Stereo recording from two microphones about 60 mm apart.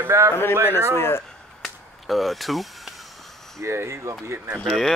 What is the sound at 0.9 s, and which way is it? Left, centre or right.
Speech, left.